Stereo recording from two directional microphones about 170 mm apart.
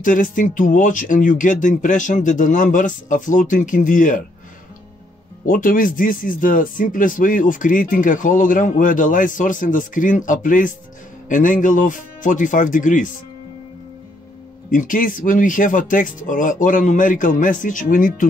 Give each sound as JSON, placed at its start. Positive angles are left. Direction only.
{"t": 0.0, "sound": "a man's voice", "side_deg": 50}
{"t": 5.4, "sound": "a man's voice", "side_deg": 55}
{"t": 14.7, "sound": "a man's voice", "side_deg": 50}